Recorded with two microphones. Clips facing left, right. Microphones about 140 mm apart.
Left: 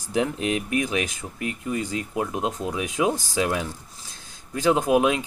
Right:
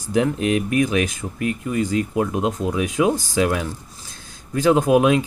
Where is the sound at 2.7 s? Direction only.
20° left (ahead or behind).